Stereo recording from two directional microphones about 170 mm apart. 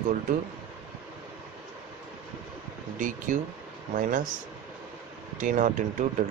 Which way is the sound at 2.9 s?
50° right (ahead or behind).